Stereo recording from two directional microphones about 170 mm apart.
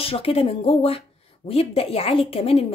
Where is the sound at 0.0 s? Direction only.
35° left (ahead or behind).